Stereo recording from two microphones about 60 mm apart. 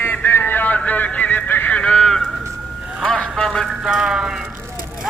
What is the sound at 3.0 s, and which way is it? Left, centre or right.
Vehicle, centre.